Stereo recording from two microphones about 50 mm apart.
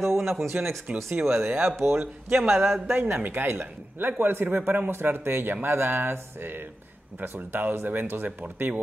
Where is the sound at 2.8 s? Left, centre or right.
Right.